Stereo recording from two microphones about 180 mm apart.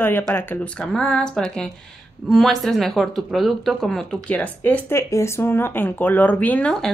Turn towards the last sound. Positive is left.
turn(degrees=5)  # may be behind; listen again after turning